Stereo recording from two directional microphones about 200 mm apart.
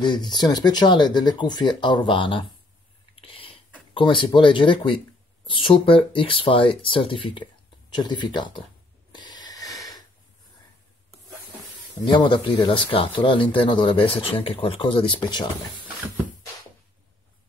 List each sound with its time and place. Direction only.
0.0 s speech: 20° left (ahead or behind)
3.2 s a sound: 25° left (ahead or behind)
3.9 s speech: 25° left (ahead or behind)
9.1 s snort: 20° left (ahead or behind)
12.0 s speech: 25° left (ahead or behind)